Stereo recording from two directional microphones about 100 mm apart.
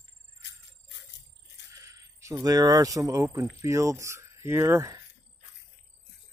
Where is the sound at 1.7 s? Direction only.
30° right (ahead or behind).